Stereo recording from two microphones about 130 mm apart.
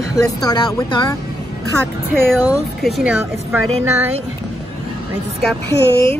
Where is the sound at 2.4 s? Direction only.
30° left (ahead or behind).